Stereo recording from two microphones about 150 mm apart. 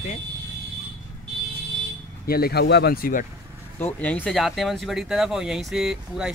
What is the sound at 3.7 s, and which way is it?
Speech, 10° left (ahead or behind).